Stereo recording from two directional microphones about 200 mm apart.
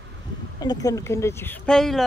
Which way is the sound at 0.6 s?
20° left (ahead or behind).